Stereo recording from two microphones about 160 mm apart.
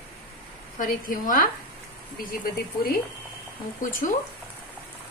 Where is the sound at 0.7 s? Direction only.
60° left (ahead or behind).